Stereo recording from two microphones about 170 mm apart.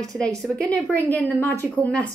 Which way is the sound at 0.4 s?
5° left (ahead or behind).